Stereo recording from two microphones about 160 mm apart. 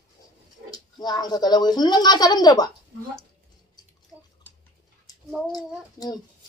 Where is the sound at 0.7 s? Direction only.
25° left (ahead or behind).